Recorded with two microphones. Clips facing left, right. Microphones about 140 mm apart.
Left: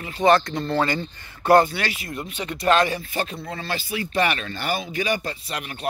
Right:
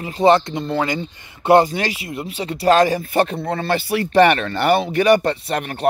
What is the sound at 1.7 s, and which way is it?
Speech, 35° right (ahead or behind).